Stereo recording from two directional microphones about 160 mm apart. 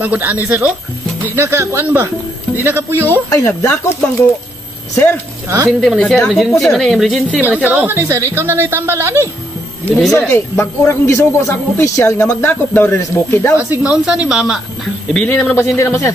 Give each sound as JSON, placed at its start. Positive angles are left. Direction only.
{"t": 0.0, "sound": "a woman's voice", "side_deg": -10}
{"t": 3.1, "sound": "speech", "side_deg": 15}
{"t": 5.7, "sound": "a woman's voice", "side_deg": 0}
{"t": 9.8, "sound": "speech", "side_deg": 5}
{"t": 13.6, "sound": "speech", "side_deg": -10}
{"t": 15.2, "sound": "speech", "side_deg": 10}